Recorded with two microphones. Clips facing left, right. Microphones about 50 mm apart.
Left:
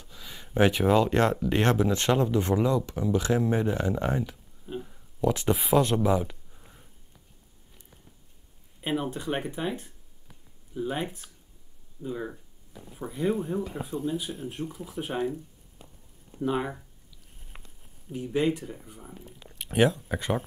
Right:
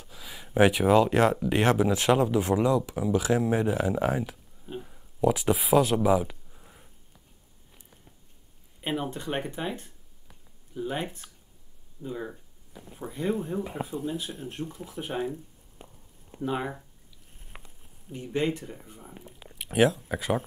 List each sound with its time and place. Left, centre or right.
0.0 s speech: centre
8.8 s speech: centre
15.8 s a sound: right
16.3 s speech: centre
17.5 s a sound: centre
18.1 s speech: centre